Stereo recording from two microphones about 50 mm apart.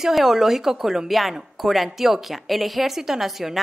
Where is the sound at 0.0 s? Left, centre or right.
Centre.